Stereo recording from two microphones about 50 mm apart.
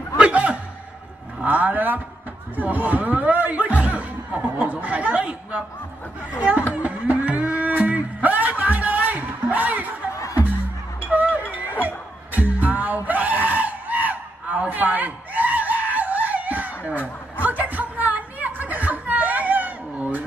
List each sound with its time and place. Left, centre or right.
0.2 s a sound: right
1.4 s speech: right
6.7 s run: right
7.6 s music: right
11.0 s music: right